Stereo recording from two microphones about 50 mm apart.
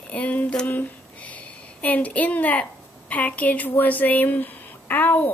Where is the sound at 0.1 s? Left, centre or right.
Left.